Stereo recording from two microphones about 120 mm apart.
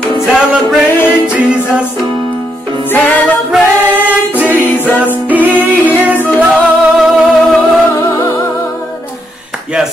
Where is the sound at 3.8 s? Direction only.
15° right (ahead or behind).